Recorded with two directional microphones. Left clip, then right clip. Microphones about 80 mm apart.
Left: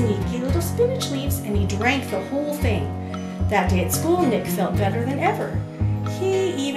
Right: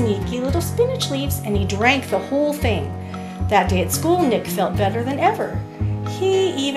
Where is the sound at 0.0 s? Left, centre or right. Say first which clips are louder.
Right 3 dB; right.